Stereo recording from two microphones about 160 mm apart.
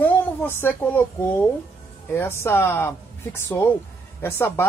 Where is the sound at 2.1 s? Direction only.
15° left (ahead or behind).